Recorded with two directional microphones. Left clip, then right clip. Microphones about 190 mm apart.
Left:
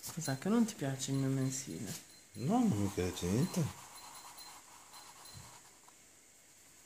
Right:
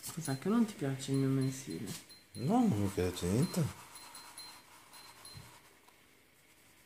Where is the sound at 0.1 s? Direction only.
45° left (ahead or behind).